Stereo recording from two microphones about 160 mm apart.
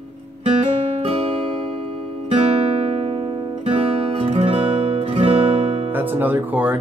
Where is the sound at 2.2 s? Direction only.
40° right (ahead or behind).